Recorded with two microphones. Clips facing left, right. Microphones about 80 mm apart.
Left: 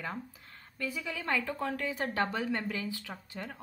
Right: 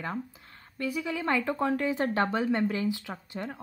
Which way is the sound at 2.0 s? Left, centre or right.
Right.